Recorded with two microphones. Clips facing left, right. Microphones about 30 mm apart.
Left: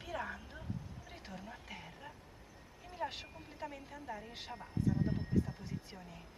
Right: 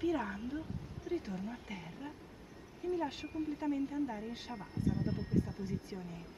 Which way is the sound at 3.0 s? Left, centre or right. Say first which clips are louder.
Right 5 dB; centre.